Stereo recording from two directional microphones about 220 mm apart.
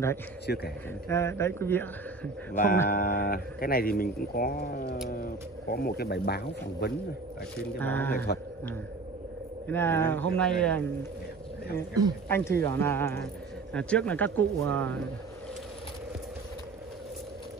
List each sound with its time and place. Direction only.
0.5 s speech: 45° left (ahead or behind)
1.0 s speech: 10° left (ahead or behind)
2.5 s speech: 35° left (ahead or behind)
7.8 s speech: 10° left (ahead or behind)
9.7 s speech: 10° left (ahead or behind)
12.3 s speech: 10° left (ahead or behind)